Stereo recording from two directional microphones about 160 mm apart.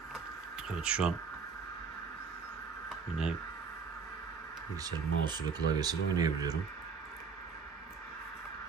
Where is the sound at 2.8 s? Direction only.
5° right (ahead or behind).